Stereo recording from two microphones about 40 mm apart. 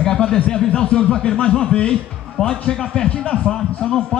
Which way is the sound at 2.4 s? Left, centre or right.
Centre.